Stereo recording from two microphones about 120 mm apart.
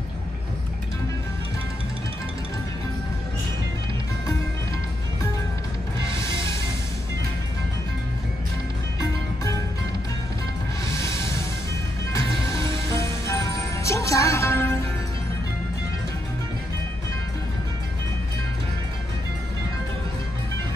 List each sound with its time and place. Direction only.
12.1 s music: 25° left (ahead or behind)